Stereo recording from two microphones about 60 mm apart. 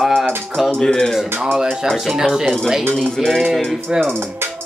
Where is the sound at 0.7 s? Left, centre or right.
Centre.